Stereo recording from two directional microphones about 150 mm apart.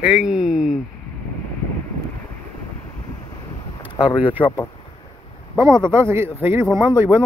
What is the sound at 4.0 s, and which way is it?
Speech, 35° left (ahead or behind).